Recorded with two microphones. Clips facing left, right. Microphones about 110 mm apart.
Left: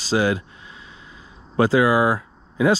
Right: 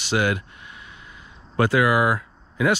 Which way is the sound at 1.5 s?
30° left (ahead or behind).